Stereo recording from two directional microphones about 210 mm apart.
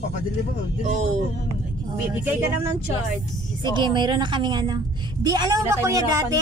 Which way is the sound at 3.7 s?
20° right (ahead or behind).